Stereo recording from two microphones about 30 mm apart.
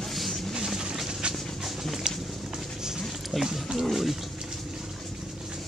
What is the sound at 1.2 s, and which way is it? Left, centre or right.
Dog, right.